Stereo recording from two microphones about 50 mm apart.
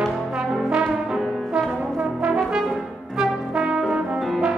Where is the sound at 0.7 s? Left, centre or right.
Centre.